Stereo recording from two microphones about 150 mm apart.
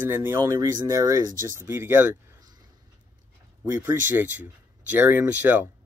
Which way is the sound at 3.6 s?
15° right (ahead or behind).